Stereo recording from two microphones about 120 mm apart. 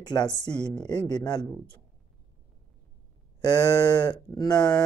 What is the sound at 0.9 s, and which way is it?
Speech, 35° left (ahead or behind).